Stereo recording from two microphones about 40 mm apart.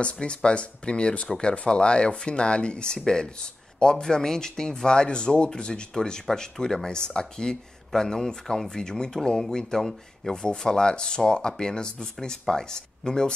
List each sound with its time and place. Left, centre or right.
0.0 s speech: left